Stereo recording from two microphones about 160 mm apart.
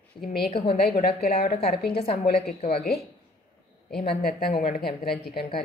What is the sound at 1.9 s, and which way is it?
Speech, 40° left (ahead or behind).